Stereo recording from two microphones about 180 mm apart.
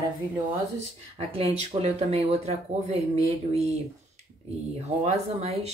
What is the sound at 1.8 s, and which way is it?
Speech, 35° right (ahead or behind).